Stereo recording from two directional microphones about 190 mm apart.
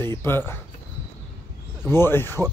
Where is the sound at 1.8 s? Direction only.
10° left (ahead or behind).